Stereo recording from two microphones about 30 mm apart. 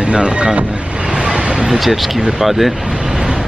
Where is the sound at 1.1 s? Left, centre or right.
Right.